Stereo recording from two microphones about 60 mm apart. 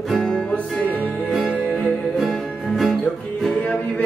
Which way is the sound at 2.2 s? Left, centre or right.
Centre.